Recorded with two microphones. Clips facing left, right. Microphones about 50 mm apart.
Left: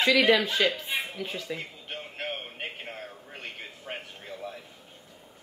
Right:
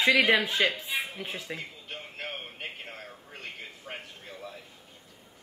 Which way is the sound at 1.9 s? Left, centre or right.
Left.